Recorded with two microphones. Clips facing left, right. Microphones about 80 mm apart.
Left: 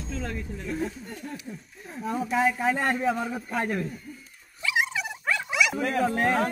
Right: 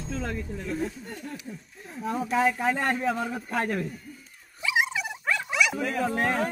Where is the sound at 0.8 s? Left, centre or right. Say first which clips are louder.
Even; left.